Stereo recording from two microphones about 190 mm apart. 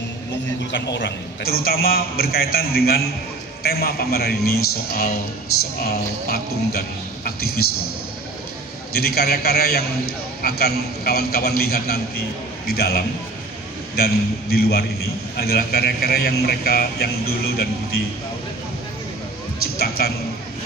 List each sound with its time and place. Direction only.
0.7 s a man's voice: 70° left (ahead or behind)
8.9 s a man's voice: 55° left (ahead or behind)
19.8 s a man's voice: 55° left (ahead or behind)